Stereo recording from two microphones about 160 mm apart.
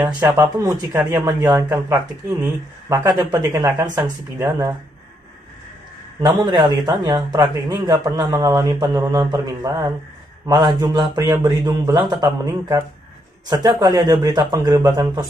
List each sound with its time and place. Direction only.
0.0 s a man's voice: 15° right (ahead or behind)
3.3 s a man's voice: 25° right (ahead or behind)
6.2 s a man's voice: 25° right (ahead or behind)
7.5 s a man's voice: 15° right (ahead or behind)